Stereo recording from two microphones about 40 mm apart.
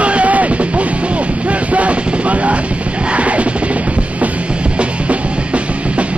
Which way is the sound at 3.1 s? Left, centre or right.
Right.